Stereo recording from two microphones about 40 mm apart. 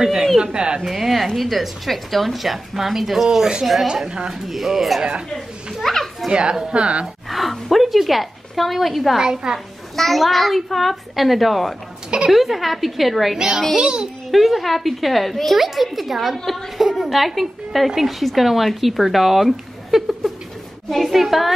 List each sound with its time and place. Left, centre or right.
0.0 s speech: centre
0.8 s a woman's voice: centre
3.8 s a woman's voice: centre
4.5 s a woman's voice: centre
5.8 s a woman's voice: centre
6.7 s speech: right
7.2 s a woman's voice: centre
9.2 s speech: centre
9.9 s a woman's voice: centre; by 14.0 s right
14.3 s a woman's voice: centre